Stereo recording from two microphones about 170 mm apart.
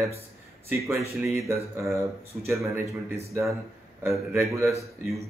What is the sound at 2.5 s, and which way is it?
Speech, 15° right (ahead or behind).